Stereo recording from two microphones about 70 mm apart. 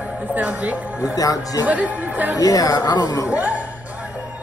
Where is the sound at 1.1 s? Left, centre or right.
Left.